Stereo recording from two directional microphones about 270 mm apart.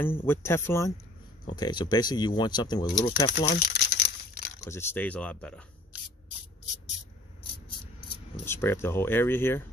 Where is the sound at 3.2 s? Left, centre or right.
Left.